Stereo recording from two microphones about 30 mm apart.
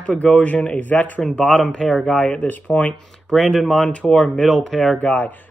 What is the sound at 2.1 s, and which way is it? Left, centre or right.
Speech, left.